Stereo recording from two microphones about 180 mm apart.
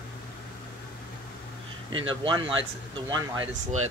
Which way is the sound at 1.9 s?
30° right (ahead or behind).